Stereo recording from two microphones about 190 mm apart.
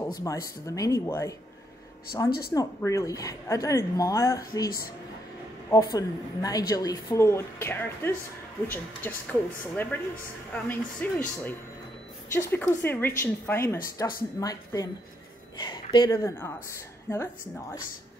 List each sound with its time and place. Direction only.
0.0 s speech: 15° left (ahead or behind)
2.5 s speech: 20° left (ahead or behind)
5.7 s speech: 20° left (ahead or behind)
16.2 s speech: 15° left (ahead or behind)